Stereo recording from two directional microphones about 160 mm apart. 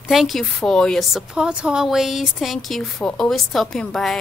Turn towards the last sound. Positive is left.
turn(degrees=0)  # may be behind; listen again after turning